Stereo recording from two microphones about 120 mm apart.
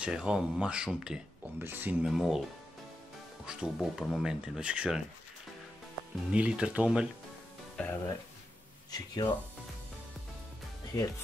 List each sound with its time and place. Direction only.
0.0 s speech: 5° right (ahead or behind)
1.6 s speech: 15° right (ahead or behind)
2.0 s speech: centre (ahead or behind)
3.4 s speech: 5° right (ahead or behind)
6.3 s speech: 10° right (ahead or behind)
7.8 s speech: 10° left (ahead or behind)
8.9 s speech: 30° left (ahead or behind)
10.9 s speech: 30° left (ahead or behind)